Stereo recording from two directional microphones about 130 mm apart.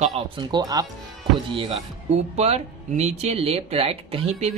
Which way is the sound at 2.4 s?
55° right (ahead or behind).